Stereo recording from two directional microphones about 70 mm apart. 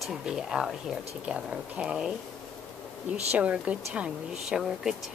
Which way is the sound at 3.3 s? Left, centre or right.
Centre.